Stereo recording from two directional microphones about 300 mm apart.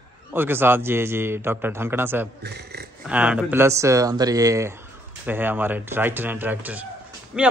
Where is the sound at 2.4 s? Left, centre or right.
Right.